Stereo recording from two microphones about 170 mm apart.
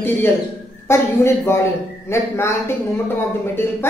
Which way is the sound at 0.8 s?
15° left (ahead or behind).